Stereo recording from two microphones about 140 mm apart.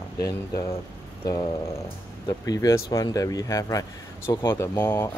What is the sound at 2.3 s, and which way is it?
Speech, 25° left (ahead or behind).